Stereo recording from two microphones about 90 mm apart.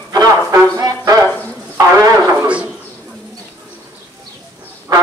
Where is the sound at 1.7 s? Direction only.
35° right (ahead or behind).